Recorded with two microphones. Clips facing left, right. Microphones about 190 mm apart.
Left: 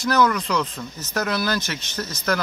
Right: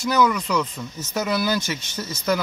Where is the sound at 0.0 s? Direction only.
5° right (ahead or behind).